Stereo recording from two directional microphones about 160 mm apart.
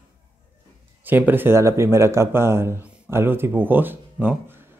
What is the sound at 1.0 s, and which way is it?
Speech, 10° right (ahead or behind).